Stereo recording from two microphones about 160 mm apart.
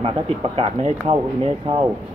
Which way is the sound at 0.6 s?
40° right (ahead or behind).